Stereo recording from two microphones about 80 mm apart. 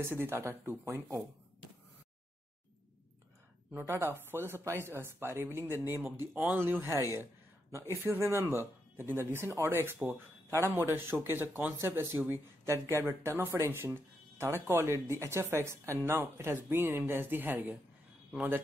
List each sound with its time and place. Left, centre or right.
0.0 s speech: right
3.8 s speech: right